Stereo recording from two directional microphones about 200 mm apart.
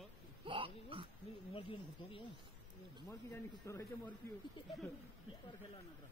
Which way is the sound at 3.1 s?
15° left (ahead or behind).